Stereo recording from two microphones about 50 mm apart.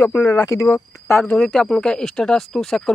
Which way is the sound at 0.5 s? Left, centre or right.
Left.